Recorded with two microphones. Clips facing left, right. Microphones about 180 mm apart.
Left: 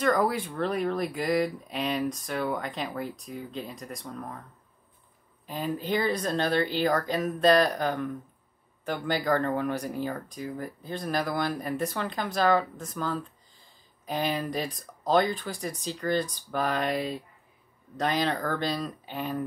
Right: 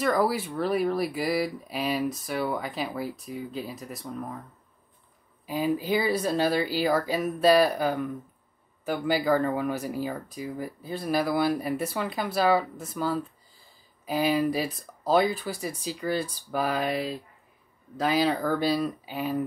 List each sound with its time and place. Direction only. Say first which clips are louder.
0.0 s speech: even; 5° right (ahead or behind)
5.5 s speech: right 4 dB; 10° right (ahead or behind)